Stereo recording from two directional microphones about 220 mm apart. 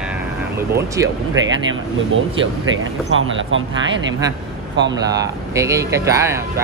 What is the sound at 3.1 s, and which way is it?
Speech, 60° right (ahead or behind).